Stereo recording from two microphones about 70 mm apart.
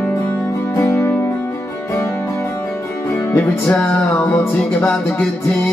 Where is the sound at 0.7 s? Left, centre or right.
Left.